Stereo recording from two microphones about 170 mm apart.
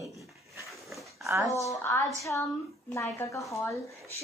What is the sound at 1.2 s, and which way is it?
Speech, 20° right (ahead or behind).